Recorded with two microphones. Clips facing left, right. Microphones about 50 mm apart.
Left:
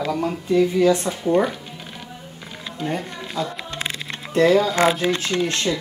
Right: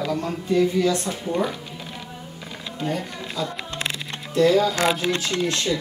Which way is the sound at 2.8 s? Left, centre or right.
Left.